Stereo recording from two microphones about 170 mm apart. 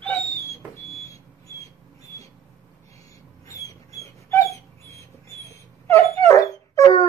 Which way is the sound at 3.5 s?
20° left (ahead or behind).